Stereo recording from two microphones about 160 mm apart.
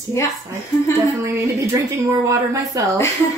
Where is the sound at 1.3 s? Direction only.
20° right (ahead or behind).